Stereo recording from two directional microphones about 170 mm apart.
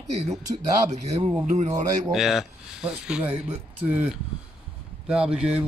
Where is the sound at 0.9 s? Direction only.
40° right (ahead or behind).